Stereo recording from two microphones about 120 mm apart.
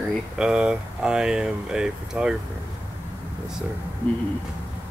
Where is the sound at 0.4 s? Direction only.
5° right (ahead or behind).